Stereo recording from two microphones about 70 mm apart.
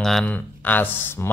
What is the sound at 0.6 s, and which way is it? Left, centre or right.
Speech, left.